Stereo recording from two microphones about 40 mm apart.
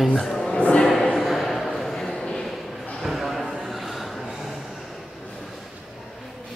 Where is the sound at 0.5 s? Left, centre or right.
Left.